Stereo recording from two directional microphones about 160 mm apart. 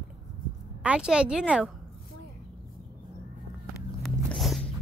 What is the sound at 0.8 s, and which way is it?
Speech, 5° right (ahead or behind).